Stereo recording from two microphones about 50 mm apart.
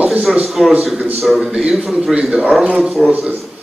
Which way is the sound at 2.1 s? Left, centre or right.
Centre.